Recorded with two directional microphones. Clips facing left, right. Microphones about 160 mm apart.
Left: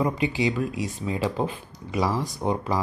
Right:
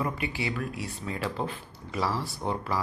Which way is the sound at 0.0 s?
20° left (ahead or behind).